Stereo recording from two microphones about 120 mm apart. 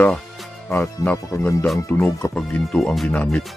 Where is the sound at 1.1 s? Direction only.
25° left (ahead or behind).